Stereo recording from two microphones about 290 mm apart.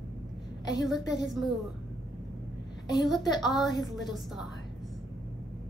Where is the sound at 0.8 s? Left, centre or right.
Centre.